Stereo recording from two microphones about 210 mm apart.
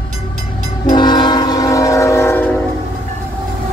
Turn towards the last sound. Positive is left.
turn(degrees=10)  # may be behind; listen again after turning